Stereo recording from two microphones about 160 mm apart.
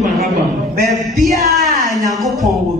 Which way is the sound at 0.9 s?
Centre (ahead or behind).